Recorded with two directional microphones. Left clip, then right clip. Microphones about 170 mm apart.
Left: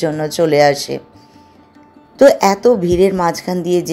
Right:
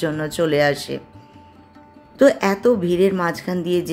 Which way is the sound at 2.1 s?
20° left (ahead or behind).